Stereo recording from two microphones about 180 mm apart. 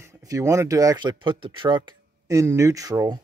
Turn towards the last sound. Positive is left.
turn(degrees=-20)  # may be behind; listen again after turning